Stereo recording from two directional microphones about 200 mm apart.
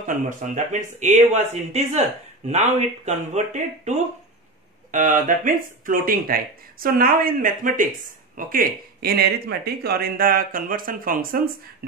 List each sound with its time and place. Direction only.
0.0 s speech: 40° right (ahead or behind)